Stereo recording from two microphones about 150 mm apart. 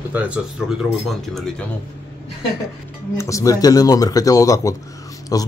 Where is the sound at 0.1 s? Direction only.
10° right (ahead or behind).